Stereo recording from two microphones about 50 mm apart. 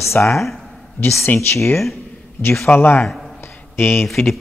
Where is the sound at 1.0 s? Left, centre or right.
Left.